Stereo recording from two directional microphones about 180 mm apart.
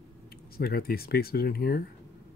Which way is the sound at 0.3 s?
55° left (ahead or behind).